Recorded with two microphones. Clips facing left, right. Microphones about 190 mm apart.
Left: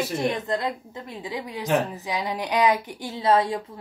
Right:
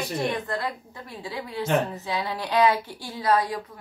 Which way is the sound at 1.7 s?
Centre (ahead or behind).